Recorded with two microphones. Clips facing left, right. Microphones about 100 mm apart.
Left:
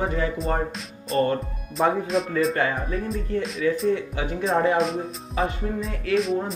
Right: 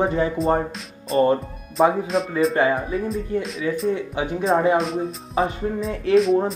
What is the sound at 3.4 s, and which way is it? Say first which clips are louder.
Speech: left 1 dB; centre (ahead or behind).